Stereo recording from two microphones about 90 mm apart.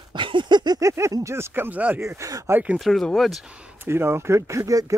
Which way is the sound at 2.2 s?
40° right (ahead or behind).